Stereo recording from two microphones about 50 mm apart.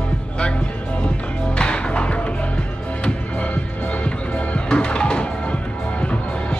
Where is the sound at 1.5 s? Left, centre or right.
Left.